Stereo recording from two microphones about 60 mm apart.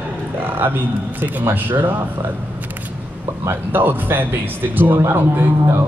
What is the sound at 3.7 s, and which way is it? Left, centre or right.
Speech, right.